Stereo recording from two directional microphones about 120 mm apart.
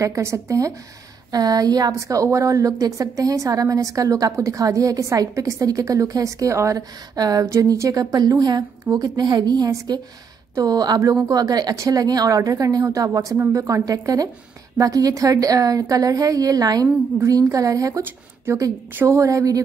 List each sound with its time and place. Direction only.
0.0 s a woman's voice: 25° right (ahead or behind)